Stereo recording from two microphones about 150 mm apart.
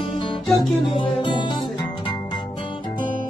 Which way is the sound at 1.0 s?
35° left (ahead or behind).